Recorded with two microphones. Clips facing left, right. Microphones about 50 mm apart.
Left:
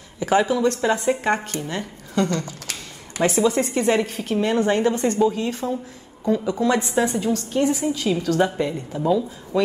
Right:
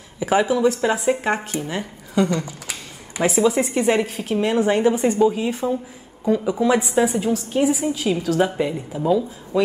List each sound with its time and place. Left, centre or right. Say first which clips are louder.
0.2 s a woman's voice: right 1 dB; centre